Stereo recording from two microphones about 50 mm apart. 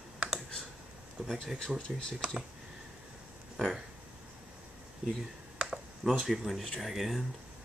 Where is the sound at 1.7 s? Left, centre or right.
Centre.